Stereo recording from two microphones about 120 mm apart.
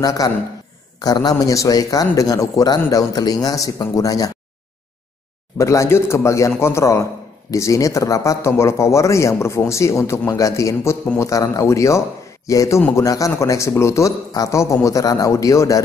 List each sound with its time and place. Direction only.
0.0 s a man's voice: 30° left (ahead or behind)
5.6 s a man's voice: 25° left (ahead or behind)